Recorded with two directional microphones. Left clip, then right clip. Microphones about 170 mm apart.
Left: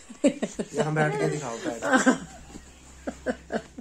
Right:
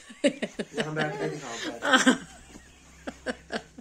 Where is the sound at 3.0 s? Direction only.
10° right (ahead or behind).